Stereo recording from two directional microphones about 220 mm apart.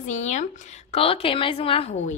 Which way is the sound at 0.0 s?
35° left (ahead or behind).